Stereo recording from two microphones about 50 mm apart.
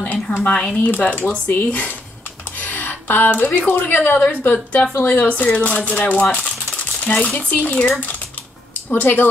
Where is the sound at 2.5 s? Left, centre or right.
Left.